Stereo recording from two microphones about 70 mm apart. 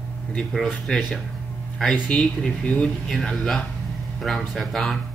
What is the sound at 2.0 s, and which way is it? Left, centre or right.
Speech, centre.